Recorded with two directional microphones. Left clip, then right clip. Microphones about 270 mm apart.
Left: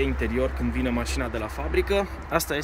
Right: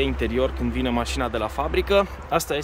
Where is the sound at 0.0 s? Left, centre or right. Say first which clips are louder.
Right 3 dB; centre.